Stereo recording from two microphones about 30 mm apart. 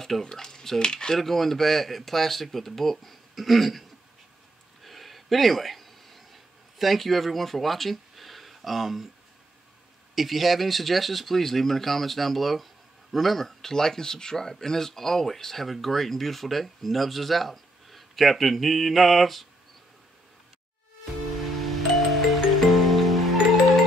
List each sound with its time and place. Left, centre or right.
0.2 s speech: centre
1.1 s speech: centre
4.8 s a sound: centre
10.1 s speech: centre
21.0 s music: centre